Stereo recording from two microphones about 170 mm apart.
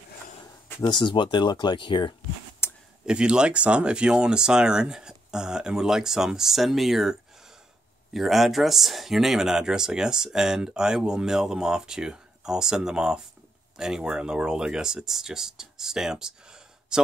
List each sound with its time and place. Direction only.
0.7 s speech: 25° left (ahead or behind)
2.6 s a sound: 15° left (ahead or behind)
3.1 s speech: 5° right (ahead or behind)